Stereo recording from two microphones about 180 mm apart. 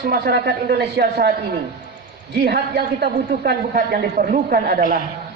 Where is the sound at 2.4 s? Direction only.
70° right (ahead or behind).